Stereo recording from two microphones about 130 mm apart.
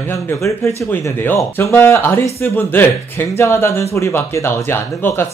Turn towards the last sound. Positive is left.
turn(degrees=15)  # may be behind; listen again after turning